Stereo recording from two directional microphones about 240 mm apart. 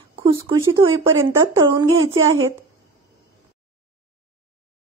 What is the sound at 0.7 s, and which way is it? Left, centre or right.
Speech, right.